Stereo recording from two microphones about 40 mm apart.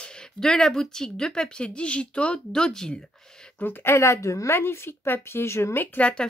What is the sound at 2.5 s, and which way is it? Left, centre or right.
Speech, centre.